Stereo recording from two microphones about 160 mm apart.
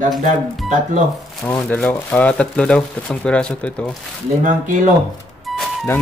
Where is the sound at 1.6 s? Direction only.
5° left (ahead or behind).